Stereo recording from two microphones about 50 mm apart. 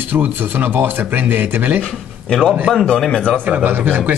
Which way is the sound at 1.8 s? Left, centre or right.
Centre.